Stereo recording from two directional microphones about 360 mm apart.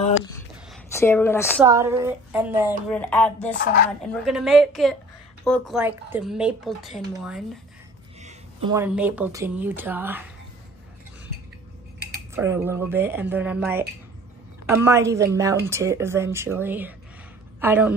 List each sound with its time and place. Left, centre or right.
0.9 s a woman's voice: centre
1.6 s a woman's voice: centre
3.5 s speech: left
4.1 s speech: centre
12.4 s a woman's voice: centre